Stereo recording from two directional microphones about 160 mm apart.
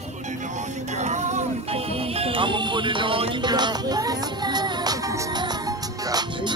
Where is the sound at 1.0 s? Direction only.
45° right (ahead or behind).